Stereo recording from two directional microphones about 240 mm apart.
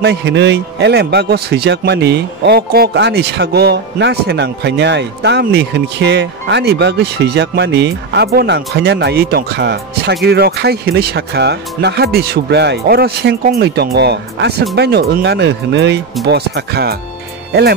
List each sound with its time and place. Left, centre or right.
0.0 s a man's voice: right